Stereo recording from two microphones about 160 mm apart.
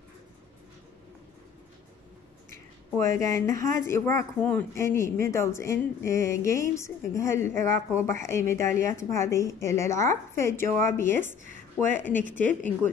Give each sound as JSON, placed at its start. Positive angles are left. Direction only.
{"t": 3.0, "sound": "speech", "side_deg": 20}